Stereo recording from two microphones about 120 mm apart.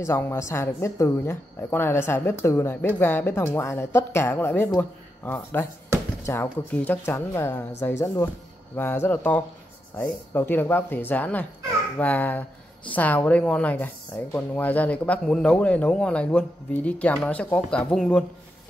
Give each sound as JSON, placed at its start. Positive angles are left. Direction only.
{"t": 0.0, "sound": "speech", "side_deg": 20}